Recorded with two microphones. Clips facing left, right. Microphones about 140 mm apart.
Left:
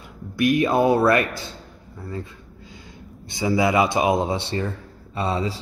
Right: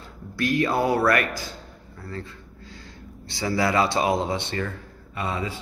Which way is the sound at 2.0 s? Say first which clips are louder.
Left 3 dB; 15° left (ahead or behind).